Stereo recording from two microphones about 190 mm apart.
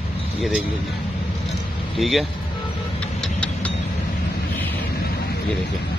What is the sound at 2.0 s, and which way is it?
Speech, centre (ahead or behind).